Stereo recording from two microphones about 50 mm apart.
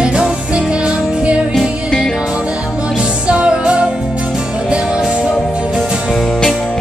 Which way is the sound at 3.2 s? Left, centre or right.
Right.